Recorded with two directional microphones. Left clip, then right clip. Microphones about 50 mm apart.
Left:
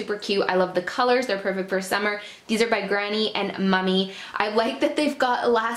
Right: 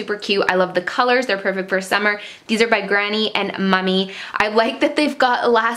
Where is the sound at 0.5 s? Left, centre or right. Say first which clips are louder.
Right 5 dB; right.